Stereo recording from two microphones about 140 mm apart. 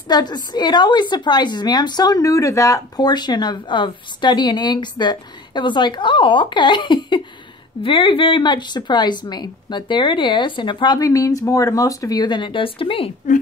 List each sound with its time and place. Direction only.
0.1 s a woman's voice: 30° left (ahead or behind)